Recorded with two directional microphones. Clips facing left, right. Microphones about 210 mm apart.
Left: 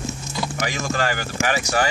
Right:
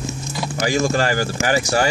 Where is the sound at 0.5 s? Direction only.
30° right (ahead or behind).